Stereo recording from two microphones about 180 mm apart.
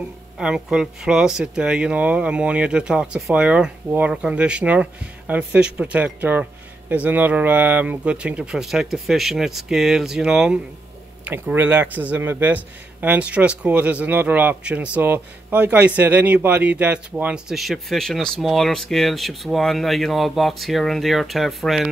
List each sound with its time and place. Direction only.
0.4 s speech: 5° right (ahead or behind)